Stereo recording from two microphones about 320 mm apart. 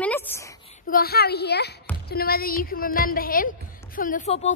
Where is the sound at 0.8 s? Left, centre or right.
Left.